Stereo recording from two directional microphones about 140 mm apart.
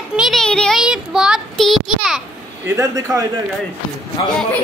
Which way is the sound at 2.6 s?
20° right (ahead or behind).